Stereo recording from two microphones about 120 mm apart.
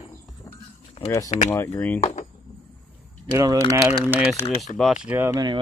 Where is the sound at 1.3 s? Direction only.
60° left (ahead or behind).